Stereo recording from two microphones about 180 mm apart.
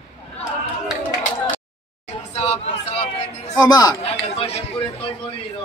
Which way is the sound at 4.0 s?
35° left (ahead or behind).